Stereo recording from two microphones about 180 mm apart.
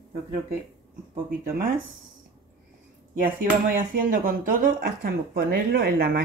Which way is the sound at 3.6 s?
50° right (ahead or behind).